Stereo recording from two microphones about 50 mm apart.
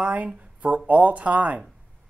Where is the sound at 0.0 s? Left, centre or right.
Right.